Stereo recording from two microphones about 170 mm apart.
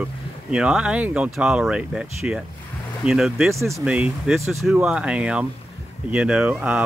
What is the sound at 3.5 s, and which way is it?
Speech, 15° right (ahead or behind).